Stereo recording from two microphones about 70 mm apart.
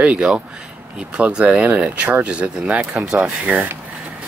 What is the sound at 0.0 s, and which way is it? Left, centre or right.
Speech, centre.